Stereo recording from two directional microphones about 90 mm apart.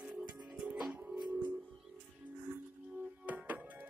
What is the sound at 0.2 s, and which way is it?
Music, 10° right (ahead or behind).